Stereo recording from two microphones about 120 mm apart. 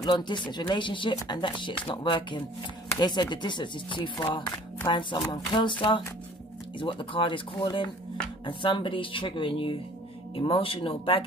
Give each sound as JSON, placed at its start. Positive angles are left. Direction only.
{"t": 0.0, "sound": "speech", "side_deg": 40}